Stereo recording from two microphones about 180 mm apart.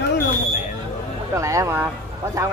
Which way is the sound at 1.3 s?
15° right (ahead or behind).